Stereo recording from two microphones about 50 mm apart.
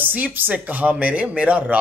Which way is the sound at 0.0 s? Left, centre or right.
Right.